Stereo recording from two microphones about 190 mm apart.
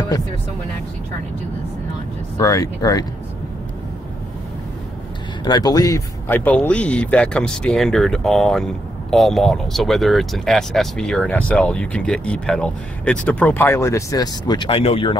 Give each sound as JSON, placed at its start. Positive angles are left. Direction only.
{"t": 2.3, "sound": "speech", "side_deg": 15}
{"t": 5.4, "sound": "speech", "side_deg": 20}